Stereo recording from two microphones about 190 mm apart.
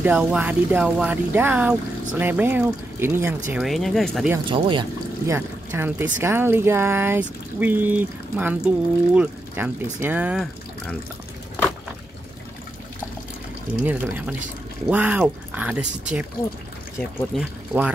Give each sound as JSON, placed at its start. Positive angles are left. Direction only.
{"t": 0.0, "sound": "speech", "side_deg": -5}
{"t": 3.5, "sound": "speech", "side_deg": 0}
{"t": 4.5, "sound": "speech", "side_deg": -25}
{"t": 5.2, "sound": "speech", "side_deg": -15}
{"t": 13.8, "sound": "speech", "side_deg": -10}
{"t": 17.4, "sound": "speech", "side_deg": -5}